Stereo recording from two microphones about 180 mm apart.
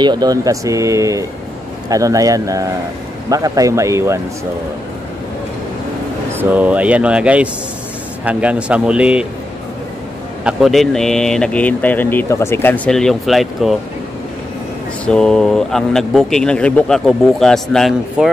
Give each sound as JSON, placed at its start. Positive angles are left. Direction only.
{"t": 0.0, "sound": "speech", "side_deg": -25}
{"t": 6.3, "sound": "speech", "side_deg": -10}
{"t": 10.4, "sound": "speech", "side_deg": 0}
{"t": 15.0, "sound": "speech", "side_deg": 5}